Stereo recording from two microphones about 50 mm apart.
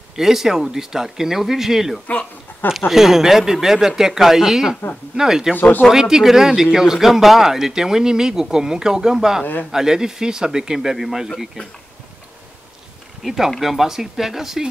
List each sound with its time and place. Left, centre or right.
0.1 s speech: centre
5.6 s speech: left
5.9 s speech: centre
13.2 s speech: centre